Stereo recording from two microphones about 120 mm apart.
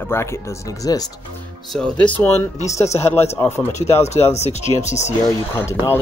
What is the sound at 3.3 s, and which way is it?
Speech, 20° left (ahead or behind).